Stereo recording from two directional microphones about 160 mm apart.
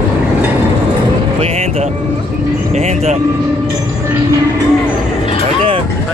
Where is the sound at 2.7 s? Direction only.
45° right (ahead or behind).